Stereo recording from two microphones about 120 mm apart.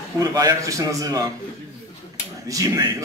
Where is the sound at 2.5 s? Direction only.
30° right (ahead or behind).